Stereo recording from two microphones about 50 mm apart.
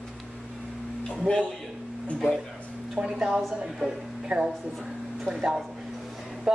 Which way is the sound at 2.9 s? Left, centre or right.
Centre.